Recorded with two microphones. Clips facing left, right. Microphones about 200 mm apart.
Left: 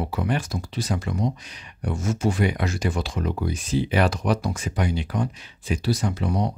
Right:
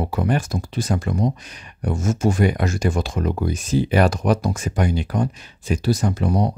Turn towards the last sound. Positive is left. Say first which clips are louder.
# right 4 dB
turn(degrees=-45)  # may be behind; listen again after turning